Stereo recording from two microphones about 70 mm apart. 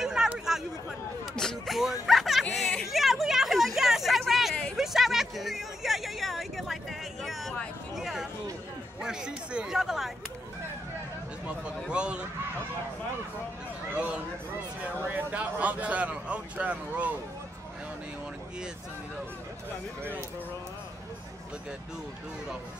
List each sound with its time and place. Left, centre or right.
0.0 s chatter: centre
1.3 s a sound: centre
1.8 s music: centre
2.5 s a sound: centre
11.4 s speech: centre
13.9 s a man's voice: centre